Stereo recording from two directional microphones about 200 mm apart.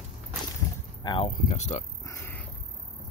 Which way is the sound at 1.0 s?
20° left (ahead or behind).